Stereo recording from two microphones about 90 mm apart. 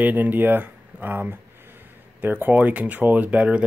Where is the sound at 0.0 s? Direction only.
20° right (ahead or behind).